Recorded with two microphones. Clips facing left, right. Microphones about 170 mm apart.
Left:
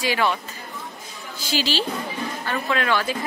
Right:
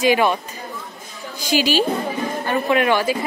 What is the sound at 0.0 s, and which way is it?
Speech, 15° right (ahead or behind).